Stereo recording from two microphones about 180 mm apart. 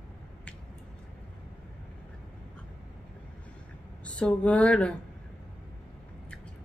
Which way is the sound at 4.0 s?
5° left (ahead or behind).